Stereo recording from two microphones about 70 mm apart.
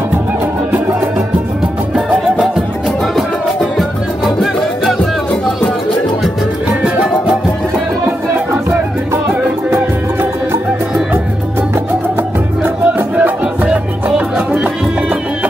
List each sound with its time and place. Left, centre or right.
2.3 s music: centre
8.6 s music: right
12.6 s music: right